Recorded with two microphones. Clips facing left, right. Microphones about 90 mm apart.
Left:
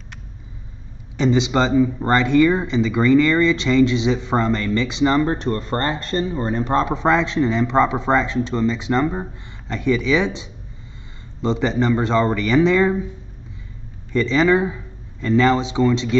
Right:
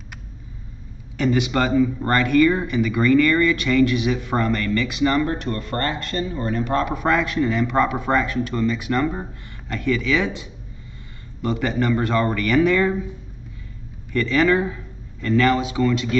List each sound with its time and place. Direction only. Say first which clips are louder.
1.1 s speech: left 2 dB; 20° left (ahead or behind)
14.1 s speech: left 2 dB; 20° left (ahead or behind)